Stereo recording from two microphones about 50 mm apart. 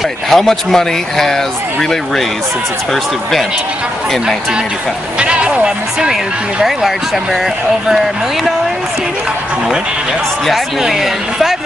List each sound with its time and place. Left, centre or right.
0.3 s speech: centre
5.2 s music: right
10.8 s a woman's voice: centre